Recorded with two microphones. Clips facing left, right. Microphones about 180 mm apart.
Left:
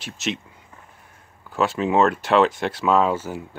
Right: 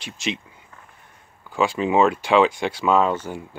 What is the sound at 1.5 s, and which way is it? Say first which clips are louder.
Speech: even; centre (ahead or behind).